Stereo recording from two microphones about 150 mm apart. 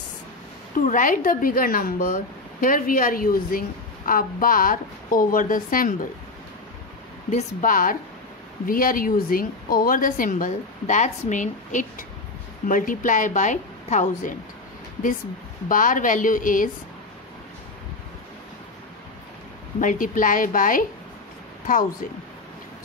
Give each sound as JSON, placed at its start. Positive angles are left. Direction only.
{"t": 0.7, "sound": "a woman's voice", "side_deg": 65}
{"t": 7.2, "sound": "a woman's voice", "side_deg": 55}
{"t": 15.7, "sound": "a woman's voice", "side_deg": 65}
{"t": 19.8, "sound": "a woman's voice", "side_deg": 60}